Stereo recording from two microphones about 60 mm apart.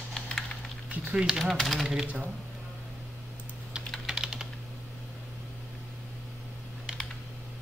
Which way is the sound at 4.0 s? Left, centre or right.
Centre.